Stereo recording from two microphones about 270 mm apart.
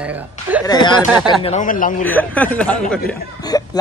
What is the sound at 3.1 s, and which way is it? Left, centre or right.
Chuckle, centre.